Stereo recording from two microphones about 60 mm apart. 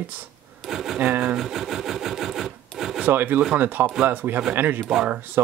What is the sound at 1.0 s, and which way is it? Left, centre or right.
Speech, right.